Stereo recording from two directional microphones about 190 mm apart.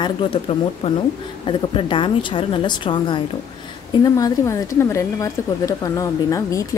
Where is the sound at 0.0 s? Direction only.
30° left (ahead or behind).